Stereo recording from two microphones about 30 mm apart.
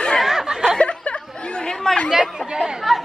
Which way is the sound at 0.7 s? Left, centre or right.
Left.